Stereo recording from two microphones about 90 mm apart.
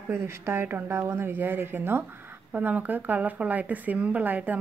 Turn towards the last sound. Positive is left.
turn(degrees=-20)  # may be behind; listen again after turning